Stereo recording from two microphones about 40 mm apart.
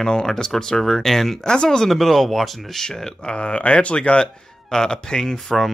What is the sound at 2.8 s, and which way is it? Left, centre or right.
Speech, left.